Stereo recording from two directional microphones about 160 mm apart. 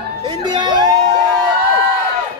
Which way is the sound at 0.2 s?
30° right (ahead or behind).